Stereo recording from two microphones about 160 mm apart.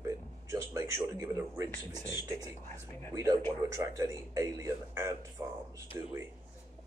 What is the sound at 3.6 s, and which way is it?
Speech, 20° right (ahead or behind).